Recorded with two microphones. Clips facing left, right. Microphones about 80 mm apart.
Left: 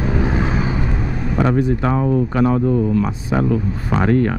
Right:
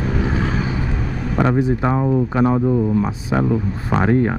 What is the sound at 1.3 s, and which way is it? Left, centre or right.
Speech, centre.